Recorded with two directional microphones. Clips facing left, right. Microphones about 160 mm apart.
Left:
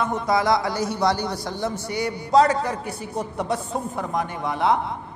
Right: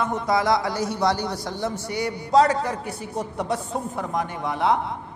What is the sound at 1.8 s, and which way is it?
A man's voice, 15° left (ahead or behind).